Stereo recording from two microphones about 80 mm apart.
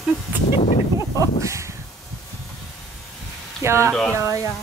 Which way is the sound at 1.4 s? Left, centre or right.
Right.